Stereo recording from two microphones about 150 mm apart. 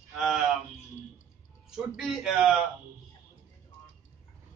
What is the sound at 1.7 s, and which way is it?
Speech, centre (ahead or behind).